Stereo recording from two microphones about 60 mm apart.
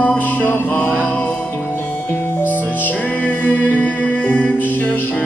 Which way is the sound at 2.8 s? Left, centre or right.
Left.